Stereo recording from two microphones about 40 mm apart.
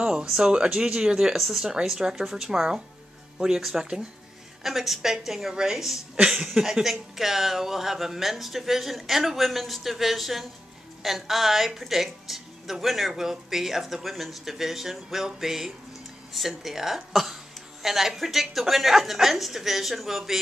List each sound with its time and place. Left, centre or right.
0.0 s a woman's voice: right
4.6 s a woman's voice: centre